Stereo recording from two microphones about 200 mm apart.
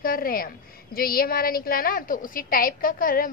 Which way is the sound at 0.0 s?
45° left (ahead or behind).